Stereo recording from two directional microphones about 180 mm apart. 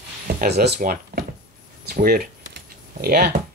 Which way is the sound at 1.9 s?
55° right (ahead or behind).